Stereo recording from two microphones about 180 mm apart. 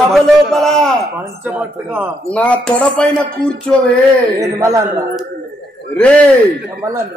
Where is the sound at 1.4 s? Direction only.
10° right (ahead or behind).